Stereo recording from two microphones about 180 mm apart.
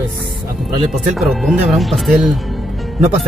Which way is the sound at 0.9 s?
Centre (ahead or behind).